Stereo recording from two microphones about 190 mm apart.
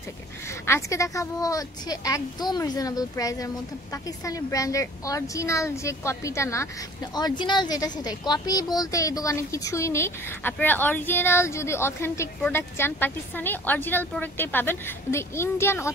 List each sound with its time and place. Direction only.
0.5 s a woman's voice: 15° left (ahead or behind)